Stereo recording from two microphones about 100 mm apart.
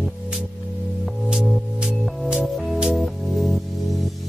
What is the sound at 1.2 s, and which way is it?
Music, 5° right (ahead or behind).